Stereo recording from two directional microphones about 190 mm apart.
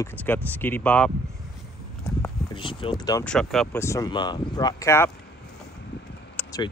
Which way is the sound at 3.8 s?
15° left (ahead or behind).